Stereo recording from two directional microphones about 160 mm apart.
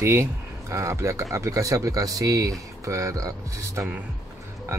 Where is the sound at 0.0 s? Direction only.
20° right (ahead or behind).